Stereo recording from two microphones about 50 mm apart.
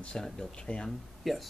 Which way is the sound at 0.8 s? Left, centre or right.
Centre.